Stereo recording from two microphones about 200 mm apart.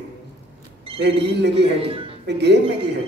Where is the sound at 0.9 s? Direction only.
60° right (ahead or behind).